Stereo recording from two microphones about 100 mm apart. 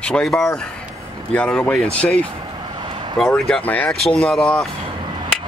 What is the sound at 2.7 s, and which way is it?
Vehicle, 55° right (ahead or behind).